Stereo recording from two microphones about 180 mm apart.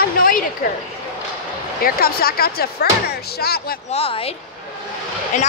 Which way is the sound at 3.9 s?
30° left (ahead or behind).